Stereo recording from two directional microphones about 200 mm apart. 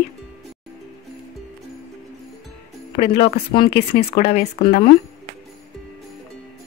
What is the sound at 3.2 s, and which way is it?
Speech, 25° left (ahead or behind).